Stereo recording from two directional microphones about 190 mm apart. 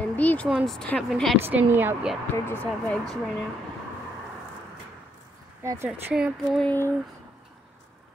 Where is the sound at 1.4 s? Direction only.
10° right (ahead or behind).